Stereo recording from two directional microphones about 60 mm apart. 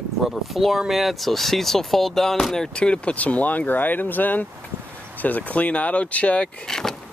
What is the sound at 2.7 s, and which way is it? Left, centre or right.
Speech, centre.